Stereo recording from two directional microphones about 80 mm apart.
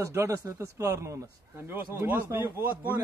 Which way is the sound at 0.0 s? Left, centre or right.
Right.